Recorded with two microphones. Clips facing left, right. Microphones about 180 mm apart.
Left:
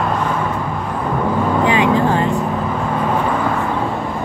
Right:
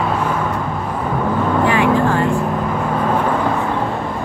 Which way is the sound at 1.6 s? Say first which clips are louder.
Even; 20° left (ahead or behind).